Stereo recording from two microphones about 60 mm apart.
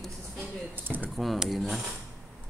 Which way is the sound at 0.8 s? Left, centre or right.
Right.